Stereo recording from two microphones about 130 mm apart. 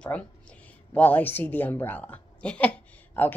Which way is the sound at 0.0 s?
10° left (ahead or behind).